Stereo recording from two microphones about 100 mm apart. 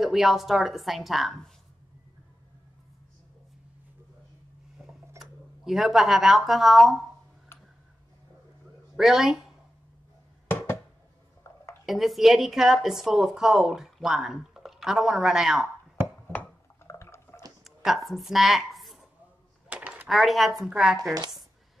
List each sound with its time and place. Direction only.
0.0 s a woman's voice: centre (ahead or behind)
5.2 s speech: centre (ahead or behind)
8.9 s a woman's voice: 5° right (ahead or behind)
11.8 s a woman's voice: centre (ahead or behind)
16.3 s a sound: 20° left (ahead or behind)
17.6 s a woman's voice: centre (ahead or behind)
19.7 s a sound: 10° right (ahead or behind)
20.1 s a woman's voice: centre (ahead or behind)